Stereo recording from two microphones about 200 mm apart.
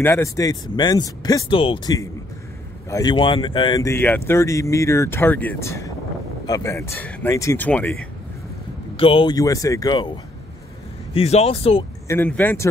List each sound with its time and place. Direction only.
0.0 s speech: 15° left (ahead or behind)
8.9 s speech: 25° left (ahead or behind)
11.1 s speech: 30° left (ahead or behind)
12.1 s speech: 10° left (ahead or behind)